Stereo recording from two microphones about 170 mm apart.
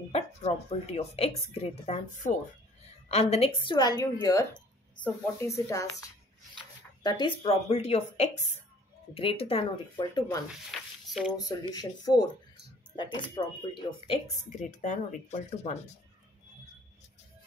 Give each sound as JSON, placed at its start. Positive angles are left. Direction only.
{"t": 0.1, "sound": "a woman's voice", "side_deg": 40}
{"t": 4.6, "sound": "a woman's voice", "side_deg": 10}
{"t": 10.7, "sound": "a sound", "side_deg": 0}
{"t": 11.3, "sound": "a woman's voice", "side_deg": 20}
{"t": 14.6, "sound": "speech", "side_deg": 50}